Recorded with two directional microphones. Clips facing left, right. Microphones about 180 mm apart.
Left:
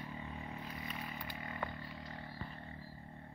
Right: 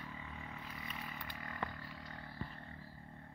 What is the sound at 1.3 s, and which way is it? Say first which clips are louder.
Roaring cats: left 1 dB; 25° left (ahead or behind).